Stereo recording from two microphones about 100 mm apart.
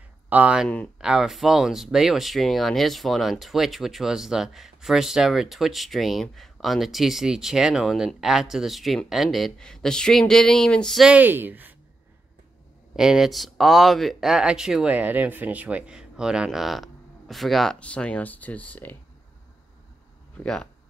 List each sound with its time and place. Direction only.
0.3 s speech: 15° right (ahead or behind); by 11.1 s 5° left (ahead or behind)
11.1 s speech: 15° right (ahead or behind)
12.9 s speech: 5° right (ahead or behind)
17.7 s speech: 10° left (ahead or behind)
20.3 s speech: 10° left (ahead or behind)